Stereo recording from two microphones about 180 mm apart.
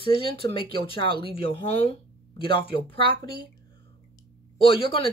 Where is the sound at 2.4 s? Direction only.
30° left (ahead or behind).